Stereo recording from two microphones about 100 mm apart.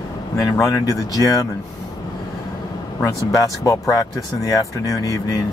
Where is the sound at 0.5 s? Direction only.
35° left (ahead or behind).